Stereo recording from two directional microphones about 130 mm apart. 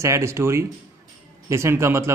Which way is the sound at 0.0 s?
20° right (ahead or behind).